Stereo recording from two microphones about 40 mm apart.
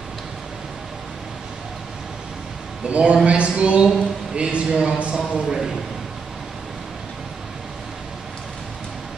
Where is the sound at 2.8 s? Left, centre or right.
Right.